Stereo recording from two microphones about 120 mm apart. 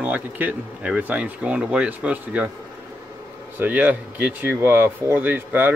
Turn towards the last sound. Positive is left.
turn(degrees=-15)  # may be behind; listen again after turning